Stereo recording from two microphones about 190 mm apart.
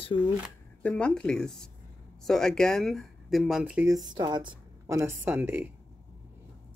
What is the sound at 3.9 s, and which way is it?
A woman's voice, 20° right (ahead or behind).